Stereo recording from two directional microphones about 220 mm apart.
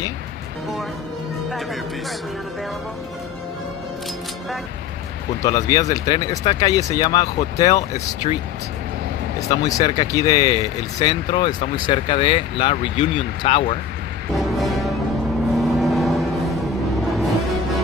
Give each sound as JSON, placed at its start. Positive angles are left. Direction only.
{"t": 5.4, "sound": "speech", "side_deg": 15}
{"t": 9.5, "sound": "speech", "side_deg": 15}
{"t": 14.3, "sound": "music", "side_deg": 0}
{"t": 15.5, "sound": "vehicle", "side_deg": 0}